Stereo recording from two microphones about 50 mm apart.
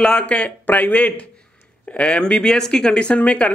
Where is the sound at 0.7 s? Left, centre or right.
Left.